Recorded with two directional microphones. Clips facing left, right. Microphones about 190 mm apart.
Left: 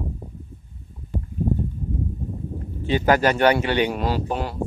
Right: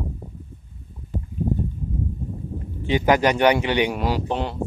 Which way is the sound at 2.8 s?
15° right (ahead or behind).